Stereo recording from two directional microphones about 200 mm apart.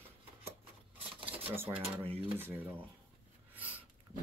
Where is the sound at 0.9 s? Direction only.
30° right (ahead or behind).